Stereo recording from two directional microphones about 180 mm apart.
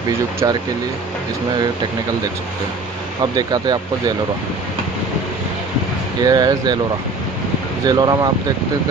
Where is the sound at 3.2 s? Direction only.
20° right (ahead or behind).